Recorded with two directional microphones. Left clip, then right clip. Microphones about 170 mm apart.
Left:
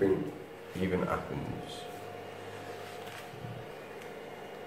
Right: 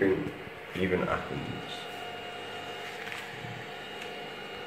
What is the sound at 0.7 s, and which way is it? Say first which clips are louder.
Speech: right 3 dB; 20° right (ahead or behind).